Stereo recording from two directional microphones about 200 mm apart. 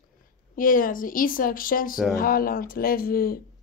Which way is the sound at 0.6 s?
45° left (ahead or behind).